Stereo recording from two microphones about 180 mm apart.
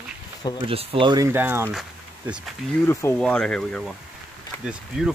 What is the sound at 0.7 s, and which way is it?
Speech, 30° right (ahead or behind).